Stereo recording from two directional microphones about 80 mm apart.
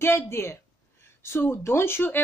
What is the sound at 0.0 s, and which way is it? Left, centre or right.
A woman's voice, left.